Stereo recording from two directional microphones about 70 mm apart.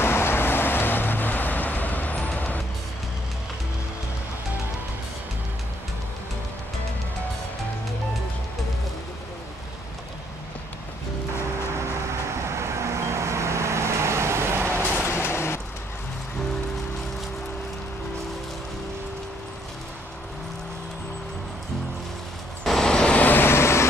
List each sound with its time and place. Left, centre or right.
0.0 s vehicle: left
12.5 s vehicle: right
15.0 s vehicle: left
22.6 s vehicle: centre; by 23.9 s left